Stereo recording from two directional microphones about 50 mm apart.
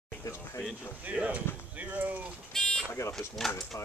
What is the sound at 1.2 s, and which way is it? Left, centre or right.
Speech, right.